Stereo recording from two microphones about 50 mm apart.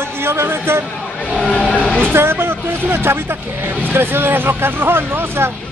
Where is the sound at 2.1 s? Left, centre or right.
Right.